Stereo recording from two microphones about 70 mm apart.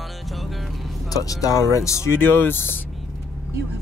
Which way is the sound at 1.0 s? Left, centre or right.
Left.